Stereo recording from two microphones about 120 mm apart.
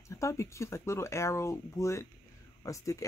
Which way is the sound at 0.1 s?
25° left (ahead or behind).